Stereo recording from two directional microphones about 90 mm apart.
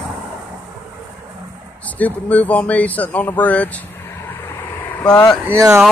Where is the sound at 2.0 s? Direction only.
15° left (ahead or behind).